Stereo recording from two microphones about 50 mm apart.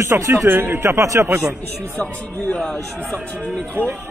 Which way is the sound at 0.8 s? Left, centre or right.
Right.